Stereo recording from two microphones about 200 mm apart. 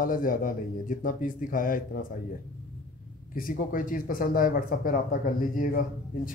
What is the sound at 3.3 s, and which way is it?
Speech, 45° left (ahead or behind).